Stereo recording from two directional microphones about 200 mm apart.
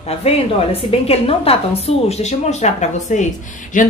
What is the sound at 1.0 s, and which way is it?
A woman's voice, 30° left (ahead or behind).